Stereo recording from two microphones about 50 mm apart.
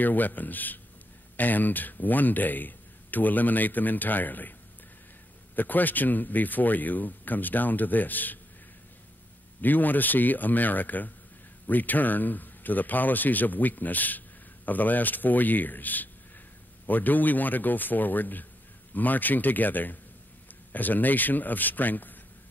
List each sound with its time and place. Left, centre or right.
0.0 s speech: left
5.6 s speech: left
9.6 s speech: left